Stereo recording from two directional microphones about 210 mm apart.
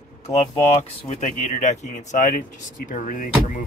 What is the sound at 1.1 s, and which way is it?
Speech, 35° left (ahead or behind).